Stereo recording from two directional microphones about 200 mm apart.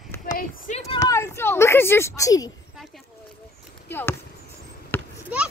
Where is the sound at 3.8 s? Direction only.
10° left (ahead or behind).